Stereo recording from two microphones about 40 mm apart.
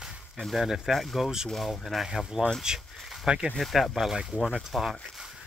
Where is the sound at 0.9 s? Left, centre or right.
Centre; by 3.5 s right.